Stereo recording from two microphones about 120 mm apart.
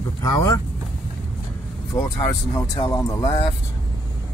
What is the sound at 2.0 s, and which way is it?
Speech, 30° left (ahead or behind).